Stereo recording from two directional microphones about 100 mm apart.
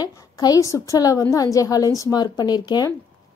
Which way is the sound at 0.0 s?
40° left (ahead or behind).